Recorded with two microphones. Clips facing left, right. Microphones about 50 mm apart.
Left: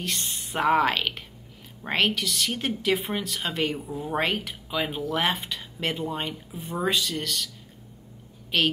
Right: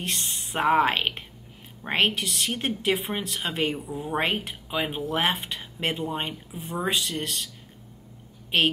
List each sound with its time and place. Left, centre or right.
0.0 s a sound: right
0.7 s a woman's voice: right
3.4 s speech: centre
4.2 s a woman's voice: right
4.6 s speech: centre
5.0 s a woman's voice: right
5.9 s speech: centre
6.9 s speech: right
8.5 s a woman's voice: right